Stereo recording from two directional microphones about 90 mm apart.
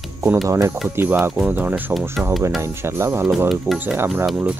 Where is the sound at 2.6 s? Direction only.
30° right (ahead or behind).